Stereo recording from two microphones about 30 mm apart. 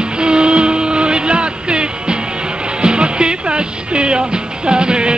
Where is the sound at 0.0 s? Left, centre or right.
Right.